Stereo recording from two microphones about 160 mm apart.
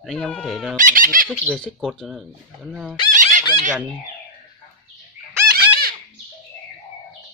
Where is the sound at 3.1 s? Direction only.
50° right (ahead or behind).